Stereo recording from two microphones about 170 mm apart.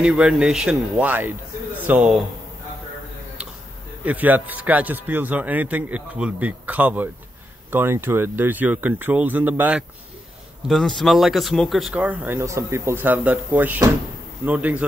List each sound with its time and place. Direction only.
0.0 s speech: 5° right (ahead or behind)
4.0 s speech: 10° right (ahead or behind)
10.7 s speech: centre (ahead or behind)